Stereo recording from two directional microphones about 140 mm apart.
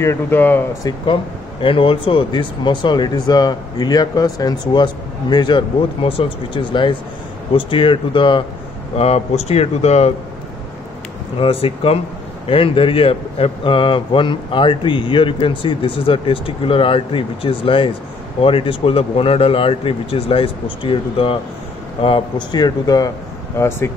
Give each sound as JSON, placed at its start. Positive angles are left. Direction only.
{"t": 0.0, "sound": "speech", "side_deg": 15}
{"t": 1.6, "sound": "speech", "side_deg": 40}
{"t": 8.9, "sound": "speech", "side_deg": 45}
{"t": 11.3, "sound": "speech", "side_deg": 40}